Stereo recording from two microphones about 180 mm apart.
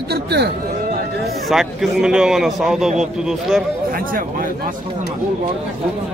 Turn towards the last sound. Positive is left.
turn(degrees=-50)  # may be behind; listen again after turning